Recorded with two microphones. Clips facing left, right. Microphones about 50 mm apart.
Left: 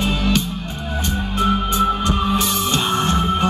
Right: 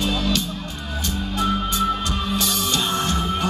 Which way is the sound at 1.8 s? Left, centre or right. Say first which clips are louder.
Left 4 dB; left.